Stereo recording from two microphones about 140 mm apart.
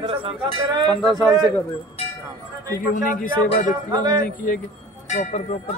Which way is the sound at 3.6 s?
30° right (ahead or behind).